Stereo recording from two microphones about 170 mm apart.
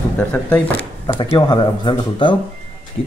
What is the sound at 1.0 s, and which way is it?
Speech, 30° left (ahead or behind).